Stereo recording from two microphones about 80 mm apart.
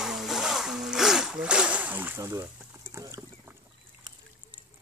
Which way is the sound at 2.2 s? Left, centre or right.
Right.